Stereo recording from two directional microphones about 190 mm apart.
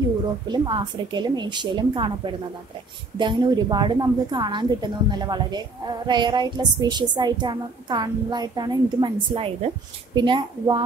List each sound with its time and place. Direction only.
0.5 s a woman's voice: 25° right (ahead or behind)